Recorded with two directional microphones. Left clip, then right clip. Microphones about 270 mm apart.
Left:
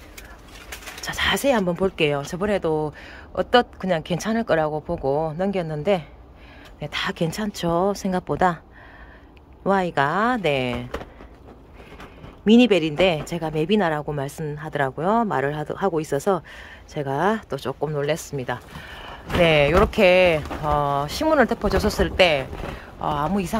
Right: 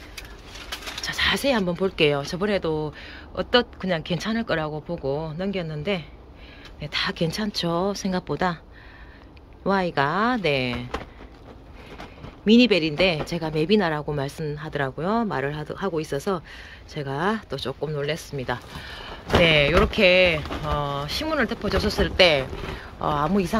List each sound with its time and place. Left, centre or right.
1.0 s a woman's voice: centre
9.6 s a woman's voice: centre
12.4 s a woman's voice: centre